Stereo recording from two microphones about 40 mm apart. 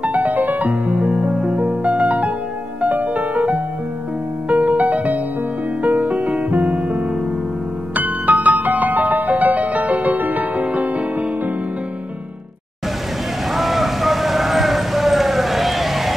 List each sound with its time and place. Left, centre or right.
0.0 s music: right
0.7 s music: right
13.5 s vehicle: centre